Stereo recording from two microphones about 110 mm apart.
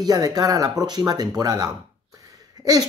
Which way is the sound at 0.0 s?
35° right (ahead or behind).